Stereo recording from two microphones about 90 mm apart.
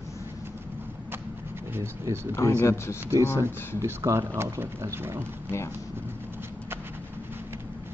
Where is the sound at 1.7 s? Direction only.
30° right (ahead or behind).